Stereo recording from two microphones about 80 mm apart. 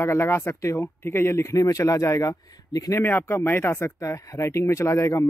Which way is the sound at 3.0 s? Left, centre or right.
Left.